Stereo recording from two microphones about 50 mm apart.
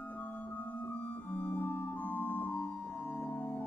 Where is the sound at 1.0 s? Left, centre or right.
Left.